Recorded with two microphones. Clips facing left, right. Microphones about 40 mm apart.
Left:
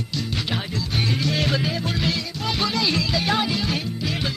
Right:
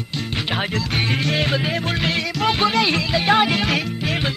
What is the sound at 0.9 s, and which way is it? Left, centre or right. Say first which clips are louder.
Music: right 1 dB; right.